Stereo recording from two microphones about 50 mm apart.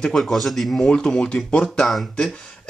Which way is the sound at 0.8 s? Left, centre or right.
Centre.